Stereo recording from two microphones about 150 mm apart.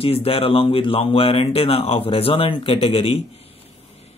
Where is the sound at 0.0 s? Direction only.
40° left (ahead or behind).